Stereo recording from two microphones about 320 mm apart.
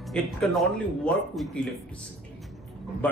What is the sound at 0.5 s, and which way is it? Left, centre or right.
Speech, centre.